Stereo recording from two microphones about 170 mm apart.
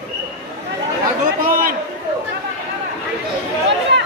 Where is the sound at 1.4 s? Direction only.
55° right (ahead or behind).